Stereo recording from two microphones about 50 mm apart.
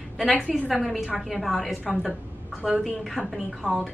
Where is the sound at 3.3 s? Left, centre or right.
Centre.